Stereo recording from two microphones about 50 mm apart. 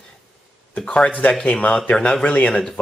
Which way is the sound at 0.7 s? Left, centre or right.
Left.